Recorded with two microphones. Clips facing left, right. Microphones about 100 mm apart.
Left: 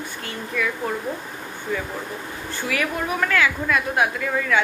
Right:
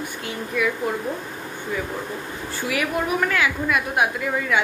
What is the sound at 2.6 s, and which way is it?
A woman's voice, 15° right (ahead or behind).